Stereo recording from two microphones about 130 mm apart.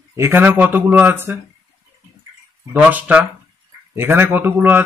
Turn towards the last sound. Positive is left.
turn(degrees=-15)  # may be behind; listen again after turning